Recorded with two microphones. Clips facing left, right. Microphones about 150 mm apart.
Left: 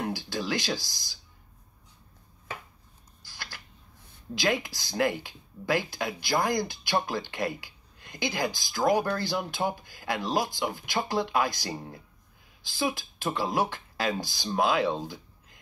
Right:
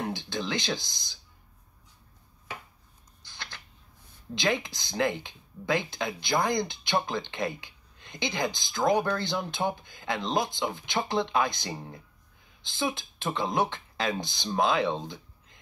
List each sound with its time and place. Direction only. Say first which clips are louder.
0.1 s speech: left 1 dB; 20° right (ahead or behind)
3.2 s a sound: even; 20° right (ahead or behind)
4.4 s speech: left 1 dB; 20° right (ahead or behind)